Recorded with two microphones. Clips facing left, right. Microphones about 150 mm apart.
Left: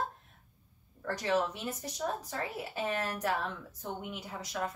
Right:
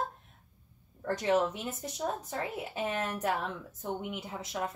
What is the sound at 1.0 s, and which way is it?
Speech, 25° right (ahead or behind).